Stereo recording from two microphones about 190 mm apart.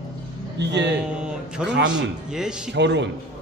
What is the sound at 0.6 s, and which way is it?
Speech, 65° right (ahead or behind).